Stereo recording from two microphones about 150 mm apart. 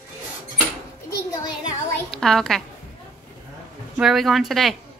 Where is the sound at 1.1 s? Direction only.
25° left (ahead or behind).